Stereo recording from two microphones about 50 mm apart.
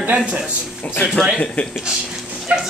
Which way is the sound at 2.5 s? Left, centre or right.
Right.